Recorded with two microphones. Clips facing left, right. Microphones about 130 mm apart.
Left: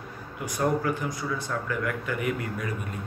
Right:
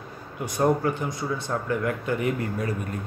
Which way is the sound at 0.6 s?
25° right (ahead or behind).